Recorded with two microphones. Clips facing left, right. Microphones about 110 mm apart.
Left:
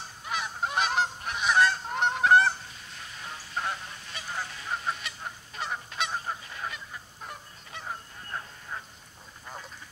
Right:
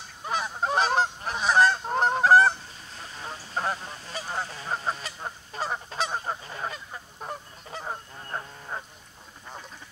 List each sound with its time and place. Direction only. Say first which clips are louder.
0.3 s goose: right 4 dB; 35° right (ahead or behind)